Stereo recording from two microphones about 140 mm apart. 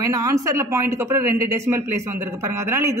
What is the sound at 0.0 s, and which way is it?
Speech, 25° right (ahead or behind).